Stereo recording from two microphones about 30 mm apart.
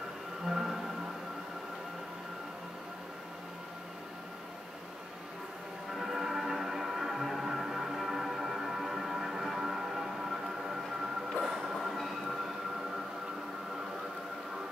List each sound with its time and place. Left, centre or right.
0.5 s music: centre
5.9 s music: centre
11.4 s train: centre